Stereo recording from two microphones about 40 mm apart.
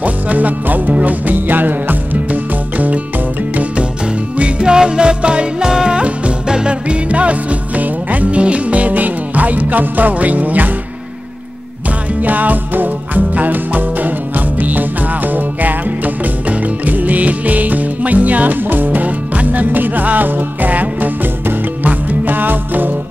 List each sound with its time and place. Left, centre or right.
0.0 s music: right
4.4 s music: right
12.2 s music: right